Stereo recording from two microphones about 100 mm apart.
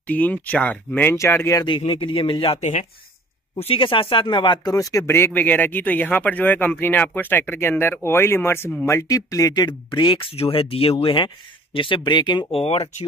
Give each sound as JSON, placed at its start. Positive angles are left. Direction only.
{"t": 0.0, "sound": "speech", "side_deg": 15}
{"t": 1.1, "sound": "speech", "side_deg": 30}
{"t": 1.8, "sound": "speech", "side_deg": 60}
{"t": 4.7, "sound": "speech", "side_deg": 35}
{"t": 12.4, "sound": "speech", "side_deg": 80}